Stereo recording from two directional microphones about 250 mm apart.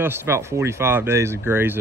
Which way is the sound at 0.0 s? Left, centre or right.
Centre.